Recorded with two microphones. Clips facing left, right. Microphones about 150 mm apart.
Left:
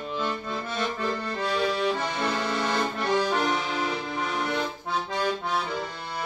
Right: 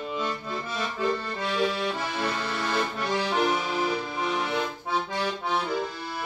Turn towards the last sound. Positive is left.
turn(degrees=-5)  # may be behind; listen again after turning